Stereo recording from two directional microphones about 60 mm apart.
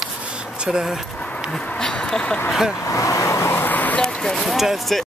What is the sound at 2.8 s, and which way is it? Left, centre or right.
Vehicle, left.